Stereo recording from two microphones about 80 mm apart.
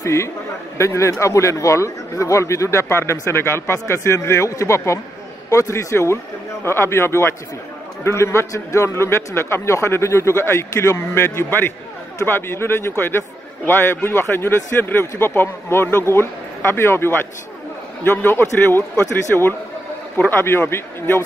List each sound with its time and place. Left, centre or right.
0.0 s a man's voice: left
20.2 s a man's voice: left